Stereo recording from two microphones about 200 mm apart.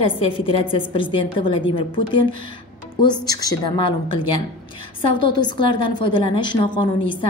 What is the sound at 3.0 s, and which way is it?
A woman's voice, 20° left (ahead or behind).